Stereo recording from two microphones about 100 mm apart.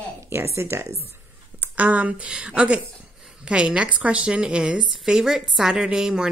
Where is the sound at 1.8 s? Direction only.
15° right (ahead or behind).